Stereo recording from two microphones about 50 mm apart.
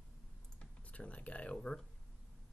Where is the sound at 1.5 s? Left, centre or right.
Centre.